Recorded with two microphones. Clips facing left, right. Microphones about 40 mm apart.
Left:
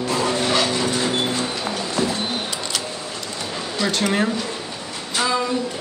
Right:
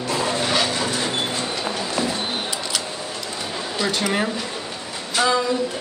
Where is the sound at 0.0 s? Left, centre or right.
Centre.